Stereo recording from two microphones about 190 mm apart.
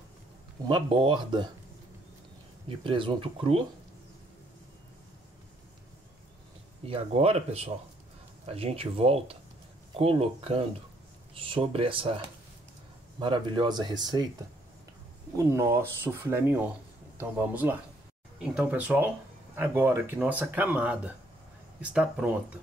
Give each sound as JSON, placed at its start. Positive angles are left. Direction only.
{"t": 0.7, "sound": "speech", "side_deg": -25}
{"t": 2.7, "sound": "speech", "side_deg": -25}
{"t": 6.9, "sound": "speech", "side_deg": -30}
{"t": 13.2, "sound": "speech", "side_deg": -25}
{"t": 15.3, "sound": "speech", "side_deg": -15}